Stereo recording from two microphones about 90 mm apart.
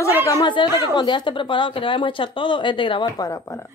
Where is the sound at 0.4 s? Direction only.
55° left (ahead or behind).